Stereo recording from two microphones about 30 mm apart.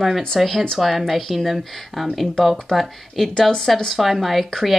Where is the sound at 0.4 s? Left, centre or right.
Centre.